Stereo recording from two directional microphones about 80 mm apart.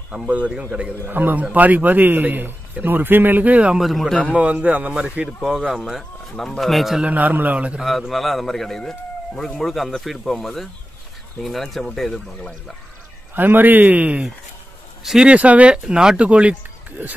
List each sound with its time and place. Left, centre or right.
0.3 s a man's voice: centre
3.8 s speech: centre
4.3 s speech: centre
7.0 s a man's voice: centre
7.8 s speech: centre
13.3 s a man's voice: right